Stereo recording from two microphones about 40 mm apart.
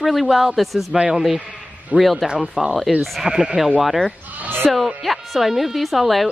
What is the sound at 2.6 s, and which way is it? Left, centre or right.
Speech, centre.